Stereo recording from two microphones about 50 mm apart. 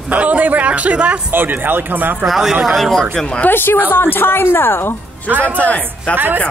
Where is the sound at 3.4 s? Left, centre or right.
Left.